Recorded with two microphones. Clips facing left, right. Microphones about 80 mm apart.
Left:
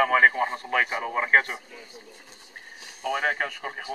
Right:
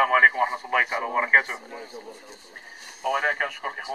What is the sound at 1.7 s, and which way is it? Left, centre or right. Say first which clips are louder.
Speech: right 7 dB; right.